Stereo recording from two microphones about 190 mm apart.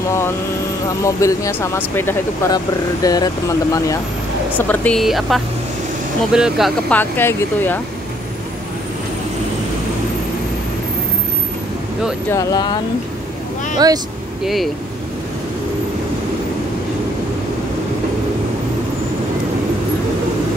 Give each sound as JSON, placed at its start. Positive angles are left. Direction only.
{"t": 1.0, "sound": "speech", "side_deg": 15}
{"t": 6.9, "sound": "speech", "side_deg": 10}
{"t": 12.3, "sound": "speech", "side_deg": 20}
{"t": 14.4, "sound": "speech", "side_deg": 0}